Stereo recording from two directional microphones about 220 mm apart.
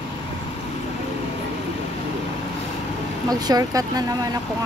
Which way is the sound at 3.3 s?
15° right (ahead or behind).